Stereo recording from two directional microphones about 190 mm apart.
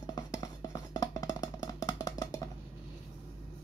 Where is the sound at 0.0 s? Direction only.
20° left (ahead or behind).